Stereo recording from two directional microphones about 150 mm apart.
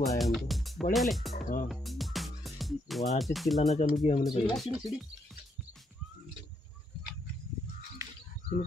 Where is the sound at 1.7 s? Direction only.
Centre (ahead or behind).